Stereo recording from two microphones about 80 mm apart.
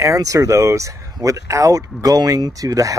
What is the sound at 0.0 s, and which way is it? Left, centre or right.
Speech, right.